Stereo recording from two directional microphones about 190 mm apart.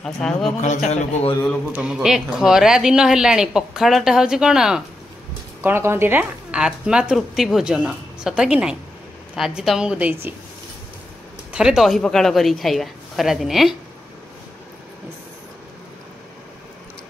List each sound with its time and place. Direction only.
0.0 s speech: 5° left (ahead or behind)
0.8 s a man's voice: 40° left (ahead or behind)
1.7 s speech: 10° right (ahead or behind)
11.5 s speech: 5° right (ahead or behind)